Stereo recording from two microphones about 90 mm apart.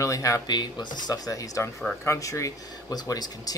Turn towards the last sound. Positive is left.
turn(degrees=45)  # may be behind; listen again after turning